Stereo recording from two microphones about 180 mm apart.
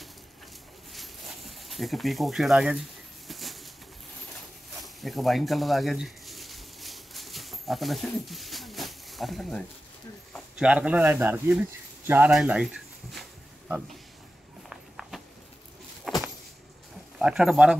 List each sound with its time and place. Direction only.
0.9 s a sound: centre (ahead or behind)
3.3 s bird: centre (ahead or behind)
4.8 s a sound: centre (ahead or behind)
10.6 s speech: 5° right (ahead or behind)
14.7 s walk: centre (ahead or behind)
16.1 s vehicle: centre (ahead or behind)
17.2 s speech: 5° right (ahead or behind)